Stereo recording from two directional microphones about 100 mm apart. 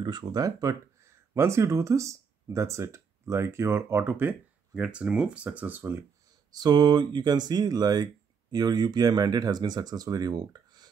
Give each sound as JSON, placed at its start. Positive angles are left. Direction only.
{"t": 0.0, "sound": "speech", "side_deg": -45}
{"t": 6.5, "sound": "speech", "side_deg": -45}